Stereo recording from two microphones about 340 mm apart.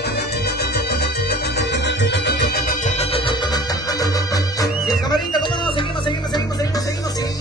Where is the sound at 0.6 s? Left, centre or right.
Left.